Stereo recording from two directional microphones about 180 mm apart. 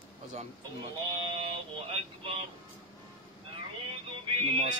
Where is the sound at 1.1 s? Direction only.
30° right (ahead or behind).